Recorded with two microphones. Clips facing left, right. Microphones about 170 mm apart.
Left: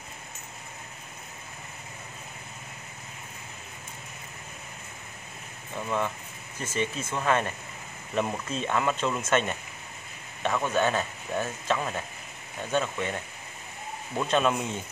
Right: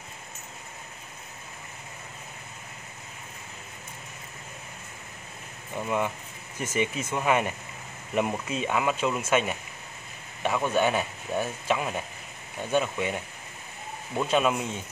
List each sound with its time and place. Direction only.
5.8 s speech: 10° right (ahead or behind)